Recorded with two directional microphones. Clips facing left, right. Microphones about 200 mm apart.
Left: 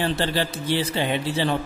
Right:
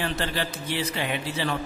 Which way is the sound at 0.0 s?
30° left (ahead or behind).